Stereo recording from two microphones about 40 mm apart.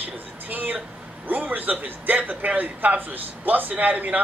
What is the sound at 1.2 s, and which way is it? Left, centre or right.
A man's voice, right.